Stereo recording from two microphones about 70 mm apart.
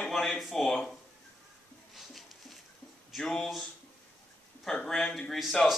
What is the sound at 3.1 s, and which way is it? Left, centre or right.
Speech, centre.